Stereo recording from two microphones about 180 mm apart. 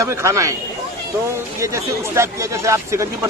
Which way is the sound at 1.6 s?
15° right (ahead or behind).